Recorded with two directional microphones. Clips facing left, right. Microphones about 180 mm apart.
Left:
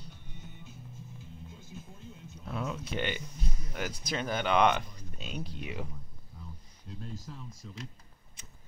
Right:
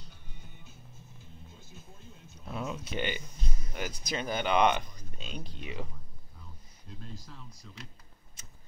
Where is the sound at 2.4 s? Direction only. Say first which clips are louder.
Left 1 dB; 5° right (ahead or behind); by 5.9 s 10° left (ahead or behind).